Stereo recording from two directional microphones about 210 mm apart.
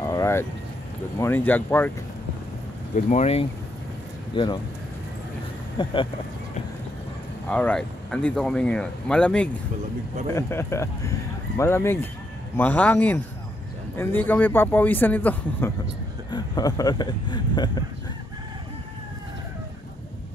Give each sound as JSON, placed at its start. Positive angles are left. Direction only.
{"t": 0.0, "sound": "vehicle", "side_deg": 15}
{"t": 1.1, "sound": "speech", "side_deg": 10}
{"t": 3.1, "sound": "speech", "side_deg": 30}
{"t": 5.8, "sound": "speech", "side_deg": 20}
{"t": 7.4, "sound": "speech", "side_deg": 5}
{"t": 16.3, "sound": "speech", "side_deg": 20}